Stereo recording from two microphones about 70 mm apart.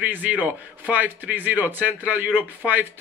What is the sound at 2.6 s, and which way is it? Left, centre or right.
Speech, centre.